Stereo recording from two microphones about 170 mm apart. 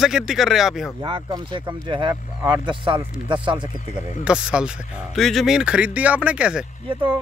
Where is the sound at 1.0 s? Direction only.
25° right (ahead or behind).